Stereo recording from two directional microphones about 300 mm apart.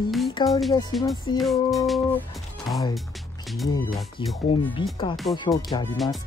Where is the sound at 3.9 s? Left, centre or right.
Centre.